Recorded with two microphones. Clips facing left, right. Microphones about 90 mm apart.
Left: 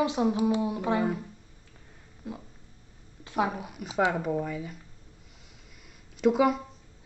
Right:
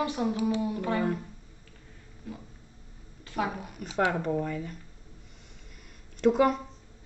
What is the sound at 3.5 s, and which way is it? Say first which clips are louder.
Speech: left 2 dB; 5° left (ahead or behind).